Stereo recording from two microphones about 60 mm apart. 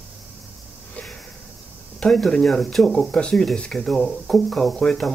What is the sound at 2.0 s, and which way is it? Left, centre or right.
Speech, centre.